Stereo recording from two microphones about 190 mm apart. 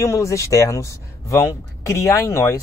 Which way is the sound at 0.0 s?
15° left (ahead or behind).